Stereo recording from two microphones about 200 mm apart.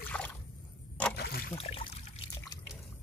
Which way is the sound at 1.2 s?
50° left (ahead or behind).